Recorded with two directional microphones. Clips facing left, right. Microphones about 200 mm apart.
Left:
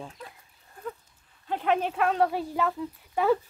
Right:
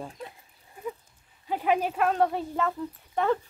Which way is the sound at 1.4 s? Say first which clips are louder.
Even; 5° right (ahead or behind).